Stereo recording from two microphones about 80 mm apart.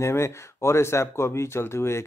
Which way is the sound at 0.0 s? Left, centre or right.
Left.